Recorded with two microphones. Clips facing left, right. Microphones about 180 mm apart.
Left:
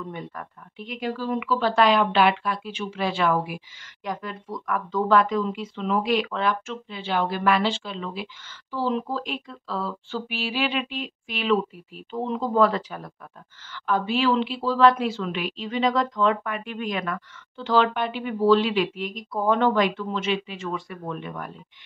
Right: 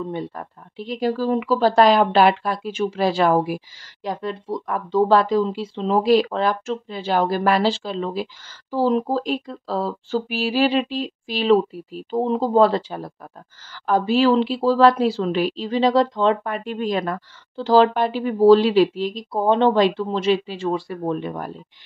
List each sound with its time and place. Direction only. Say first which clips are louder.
0.0 s speech: right 7 dB; 30° right (ahead or behind)